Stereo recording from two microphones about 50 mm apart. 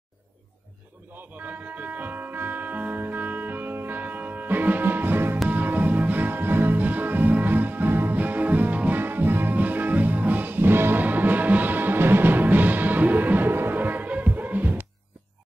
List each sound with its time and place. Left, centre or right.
1.4 s music: right
9.0 s music: right